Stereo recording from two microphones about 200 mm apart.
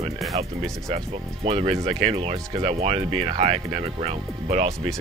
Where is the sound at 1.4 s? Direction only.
30° right (ahead or behind).